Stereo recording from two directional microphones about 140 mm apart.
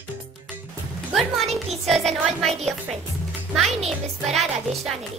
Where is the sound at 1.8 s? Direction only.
Centre (ahead or behind).